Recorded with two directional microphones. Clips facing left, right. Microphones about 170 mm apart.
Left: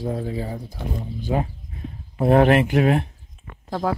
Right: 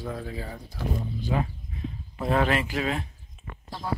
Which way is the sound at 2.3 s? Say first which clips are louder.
Left 9 dB; 55° left (ahead or behind).